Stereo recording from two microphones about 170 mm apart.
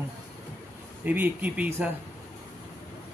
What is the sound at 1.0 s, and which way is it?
Speech, 10° right (ahead or behind).